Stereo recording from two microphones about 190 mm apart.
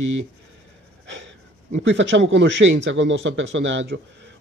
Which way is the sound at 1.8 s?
70° right (ahead or behind).